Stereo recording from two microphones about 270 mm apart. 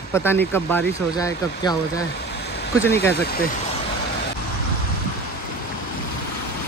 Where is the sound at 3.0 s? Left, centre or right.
Left.